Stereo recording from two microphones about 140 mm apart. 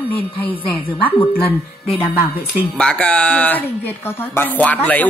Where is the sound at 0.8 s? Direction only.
40° left (ahead or behind).